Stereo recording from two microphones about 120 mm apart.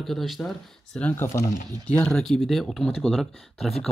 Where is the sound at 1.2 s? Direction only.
25° left (ahead or behind).